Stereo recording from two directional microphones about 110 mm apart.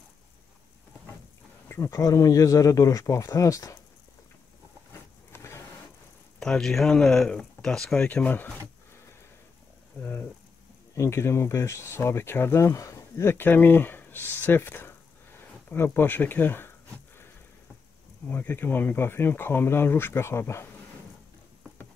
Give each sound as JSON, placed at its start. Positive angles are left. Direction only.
{"t": 1.7, "sound": "speech", "side_deg": 30}
{"t": 5.3, "sound": "vehicle", "side_deg": 25}
{"t": 6.4, "sound": "speech", "side_deg": 5}
{"t": 11.0, "sound": "speech", "side_deg": 25}
{"t": 18.3, "sound": "speech", "side_deg": 15}